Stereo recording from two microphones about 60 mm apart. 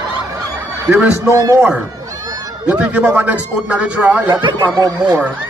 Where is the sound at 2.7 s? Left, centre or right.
Right.